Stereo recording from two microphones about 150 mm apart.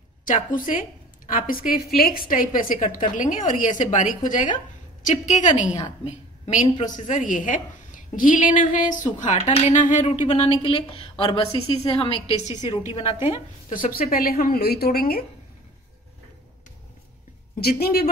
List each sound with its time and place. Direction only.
0.2 s a woman's voice: 65° left (ahead or behind); by 15.2 s 90° left
17.6 s speech: 90° left